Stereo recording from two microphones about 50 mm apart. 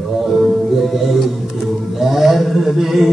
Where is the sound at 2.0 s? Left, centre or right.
Centre.